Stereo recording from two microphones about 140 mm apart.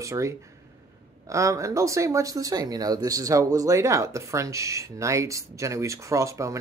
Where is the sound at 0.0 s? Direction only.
20° right (ahead or behind).